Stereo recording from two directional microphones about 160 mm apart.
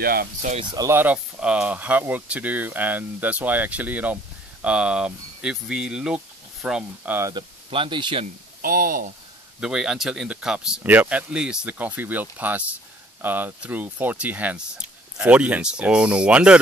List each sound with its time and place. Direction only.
0.0 s speech: 70° right (ahead or behind)
0.6 s speech: 25° right (ahead or behind); by 7.2 s 5° right (ahead or behind)
7.2 s speech: 20° right (ahead or behind)
7.7 s speech: 30° right (ahead or behind)
8.6 s speech: 60° right (ahead or behind)
9.6 s speech: 5° right (ahead or behind)